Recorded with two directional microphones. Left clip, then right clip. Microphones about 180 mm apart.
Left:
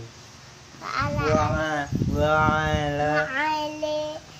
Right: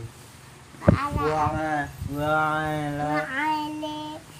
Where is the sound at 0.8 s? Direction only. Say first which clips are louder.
Right 2 dB; 10° left (ahead or behind); by 3.1 s 25° left (ahead or behind).